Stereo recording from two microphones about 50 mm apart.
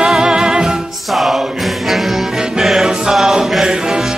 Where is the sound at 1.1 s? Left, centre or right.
Centre.